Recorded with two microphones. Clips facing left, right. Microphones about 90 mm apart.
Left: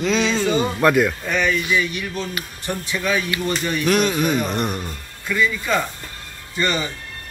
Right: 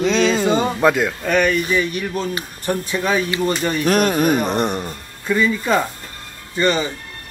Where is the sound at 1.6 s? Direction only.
40° right (ahead or behind).